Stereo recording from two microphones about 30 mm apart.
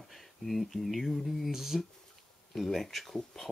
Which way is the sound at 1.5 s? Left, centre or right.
Centre.